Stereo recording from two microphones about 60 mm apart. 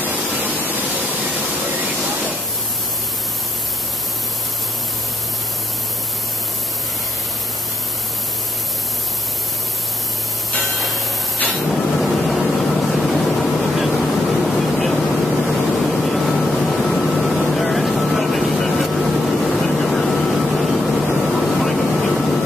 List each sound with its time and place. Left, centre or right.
0.0 s waterfall: right
11.7 s vehicle: centre